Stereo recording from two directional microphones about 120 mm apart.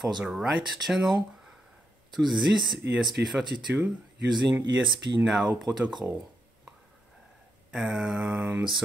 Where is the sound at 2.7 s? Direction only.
Centre (ahead or behind).